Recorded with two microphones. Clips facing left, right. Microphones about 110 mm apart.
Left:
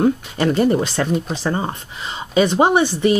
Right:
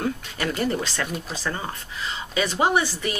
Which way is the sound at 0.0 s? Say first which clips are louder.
Left 10 dB; 30° left (ahead or behind).